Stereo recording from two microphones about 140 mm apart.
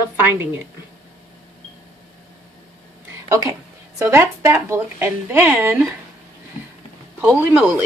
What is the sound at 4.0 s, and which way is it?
A woman's voice, 20° right (ahead or behind).